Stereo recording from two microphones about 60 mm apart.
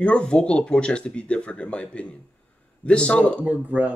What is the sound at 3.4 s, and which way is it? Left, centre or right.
Speech, right.